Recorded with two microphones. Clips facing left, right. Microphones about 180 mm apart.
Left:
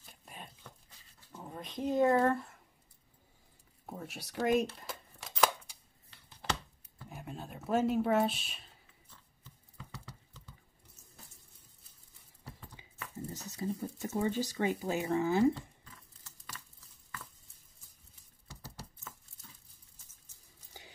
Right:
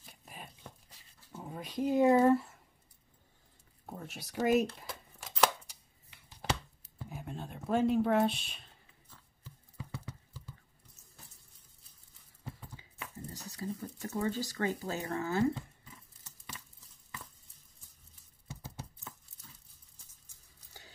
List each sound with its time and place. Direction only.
0.0 s a sound: centre (ahead or behind)
1.3 s speech: 5° right (ahead or behind)
3.8 s speech: centre (ahead or behind)
7.1 s speech: centre (ahead or behind)
9.4 s horse: 20° right (ahead or behind)
13.3 s speech: 20° left (ahead or behind)